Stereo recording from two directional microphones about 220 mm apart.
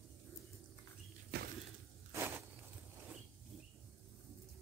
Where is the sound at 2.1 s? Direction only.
10° right (ahead or behind).